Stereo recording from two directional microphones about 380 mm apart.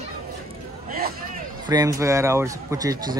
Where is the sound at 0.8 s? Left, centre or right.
Right.